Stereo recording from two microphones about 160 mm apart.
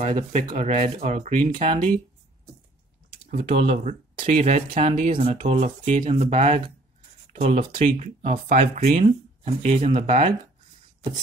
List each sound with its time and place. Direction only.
0.0 s speech: 40° right (ahead or behind)
3.4 s speech: 40° right (ahead or behind)
5.1 s speech: 35° right (ahead or behind); by 9.0 s 55° right (ahead or behind)
9.0 s speech: 40° right (ahead or behind)